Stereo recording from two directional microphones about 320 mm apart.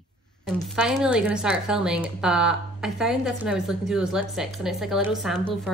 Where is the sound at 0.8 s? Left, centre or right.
Centre.